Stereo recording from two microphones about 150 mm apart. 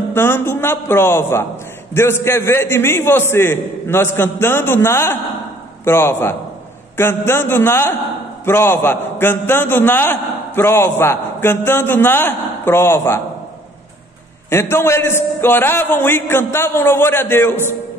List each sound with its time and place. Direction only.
0.1 s a man's voice: 15° left (ahead or behind)
14.5 s a man's voice: 15° left (ahead or behind)